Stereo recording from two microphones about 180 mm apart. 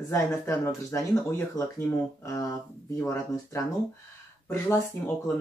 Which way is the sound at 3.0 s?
20° left (ahead or behind).